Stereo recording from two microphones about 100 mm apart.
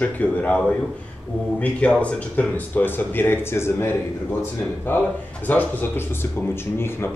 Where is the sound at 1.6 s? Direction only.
15° left (ahead or behind).